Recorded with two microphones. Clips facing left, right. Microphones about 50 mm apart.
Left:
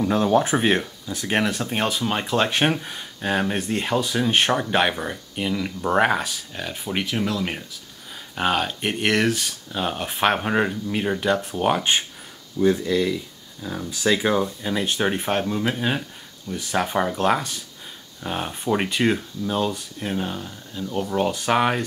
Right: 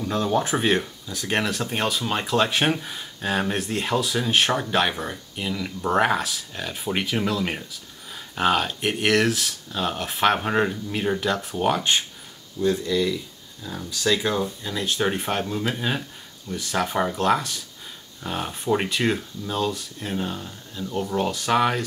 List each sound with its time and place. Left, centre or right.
0.0 s speech: centre
14.9 s speech: centre